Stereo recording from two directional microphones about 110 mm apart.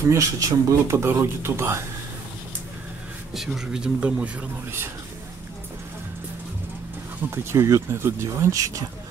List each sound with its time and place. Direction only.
0.1 s speech: 30° right (ahead or behind)
3.3 s speech: 5° right (ahead or behind)
7.2 s speech: 25° right (ahead or behind)